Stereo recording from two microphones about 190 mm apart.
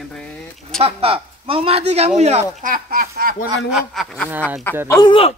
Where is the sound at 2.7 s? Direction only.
50° right (ahead or behind).